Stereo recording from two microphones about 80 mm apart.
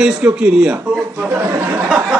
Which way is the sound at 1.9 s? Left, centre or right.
Centre.